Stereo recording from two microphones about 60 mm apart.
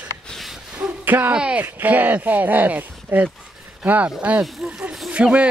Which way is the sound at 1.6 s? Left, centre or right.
Right.